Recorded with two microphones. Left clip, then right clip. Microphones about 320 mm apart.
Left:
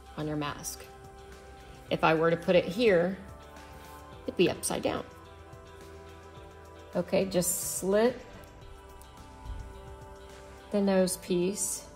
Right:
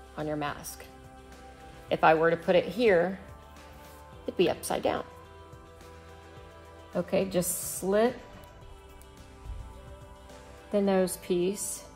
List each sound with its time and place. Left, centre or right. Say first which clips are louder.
0.1 s speech: right 2 dB; centre
1.9 s speech: right 3 dB; centre
4.3 s speech: right 1 dB; centre
6.9 s a woman's voice: even; centre
10.7 s speech: right 1 dB; centre